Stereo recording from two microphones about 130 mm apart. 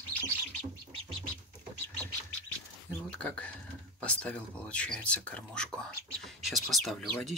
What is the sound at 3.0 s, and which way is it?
Speech, 10° left (ahead or behind).